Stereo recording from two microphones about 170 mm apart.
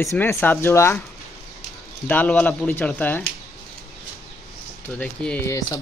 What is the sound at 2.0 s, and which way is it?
Speech, 10° left (ahead or behind).